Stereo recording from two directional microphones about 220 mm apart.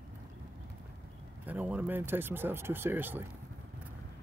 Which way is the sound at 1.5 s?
5° right (ahead or behind).